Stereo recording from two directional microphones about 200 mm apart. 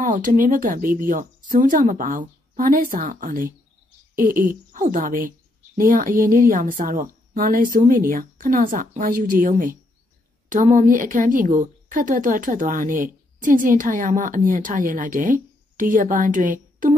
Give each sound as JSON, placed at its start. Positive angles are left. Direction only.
{"t": 0.0, "sound": "a woman's voice", "side_deg": -40}